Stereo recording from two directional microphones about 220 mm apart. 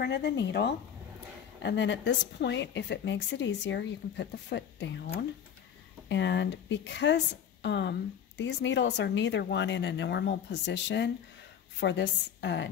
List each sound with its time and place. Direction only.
0.0 s a woman's voice: 50° left (ahead or behind)
6.0 s a woman's voice: 55° left (ahead or behind)